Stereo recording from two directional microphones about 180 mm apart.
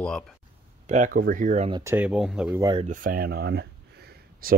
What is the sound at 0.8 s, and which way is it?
Speech, 45° right (ahead or behind).